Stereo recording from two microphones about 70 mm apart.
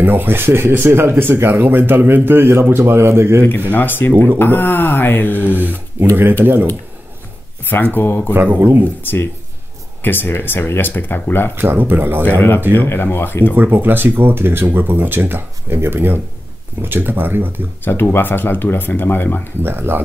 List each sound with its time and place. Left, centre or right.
0.0 s speech: right
3.7 s speech: left
5.4 s speech: right
7.6 s speech: left
8.3 s speech: right
10.0 s speech: left
11.5 s speech: right
12.3 s speech: left
13.6 s speech: right
17.8 s speech: left
19.6 s speech: right